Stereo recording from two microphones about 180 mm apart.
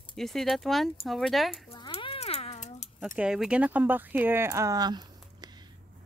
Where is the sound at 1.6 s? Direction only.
30° left (ahead or behind).